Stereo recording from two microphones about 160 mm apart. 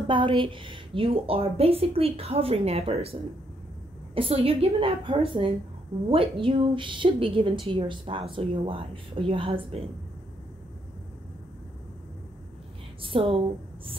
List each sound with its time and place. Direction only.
0.1 s a woman's voice: 30° right (ahead or behind)
13.1 s a woman's voice: 35° right (ahead or behind)